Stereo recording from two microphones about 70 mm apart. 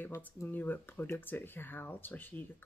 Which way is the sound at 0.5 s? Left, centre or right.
Left.